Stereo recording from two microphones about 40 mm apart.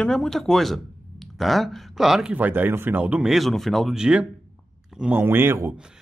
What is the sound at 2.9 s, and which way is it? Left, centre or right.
Speech, right.